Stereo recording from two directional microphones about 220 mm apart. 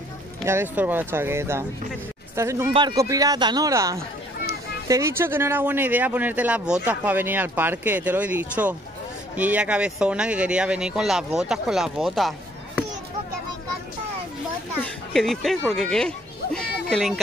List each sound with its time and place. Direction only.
0.5 s speech: 10° right (ahead or behind)
15.1 s speech: centre (ahead or behind)
16.5 s a sound: centre (ahead or behind)